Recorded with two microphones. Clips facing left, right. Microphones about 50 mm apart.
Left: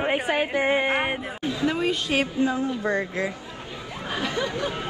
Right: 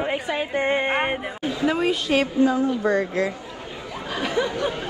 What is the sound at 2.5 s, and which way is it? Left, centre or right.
Speech, right.